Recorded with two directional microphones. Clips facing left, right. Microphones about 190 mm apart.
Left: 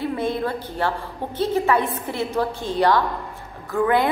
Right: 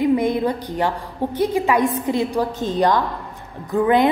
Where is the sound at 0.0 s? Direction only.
15° right (ahead or behind).